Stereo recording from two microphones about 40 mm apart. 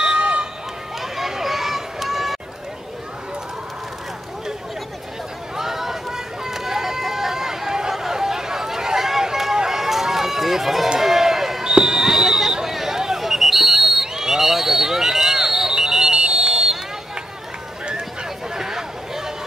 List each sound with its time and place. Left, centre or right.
0.0 s run: right
1.1 s run: centre
5.6 s run: centre
11.6 s a sound: centre
14.1 s smoke detector: centre
18.5 s chatter: centre